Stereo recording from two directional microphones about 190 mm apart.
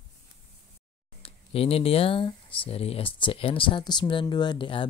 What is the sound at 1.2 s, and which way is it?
Speech, 30° left (ahead or behind).